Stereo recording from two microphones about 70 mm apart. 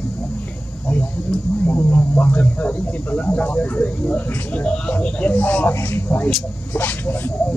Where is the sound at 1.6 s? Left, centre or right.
Left.